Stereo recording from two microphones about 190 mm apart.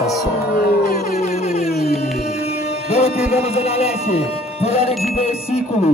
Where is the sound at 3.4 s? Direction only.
35° left (ahead or behind).